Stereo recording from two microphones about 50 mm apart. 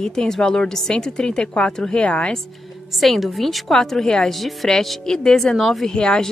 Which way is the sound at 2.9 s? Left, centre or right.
Centre.